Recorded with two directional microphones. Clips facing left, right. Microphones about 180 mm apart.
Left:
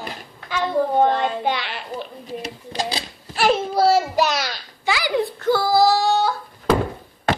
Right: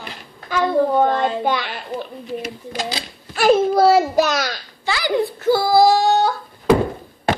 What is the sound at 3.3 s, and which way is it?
A child's voice, 45° right (ahead or behind).